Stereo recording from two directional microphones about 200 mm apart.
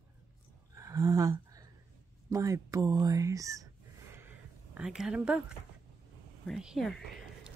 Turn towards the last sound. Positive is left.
turn(degrees=0)  # may be behind; listen again after turning